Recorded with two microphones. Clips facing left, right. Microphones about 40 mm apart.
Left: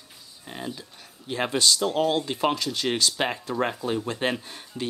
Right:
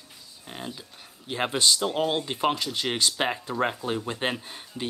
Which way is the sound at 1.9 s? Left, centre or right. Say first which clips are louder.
Left 2 dB; centre.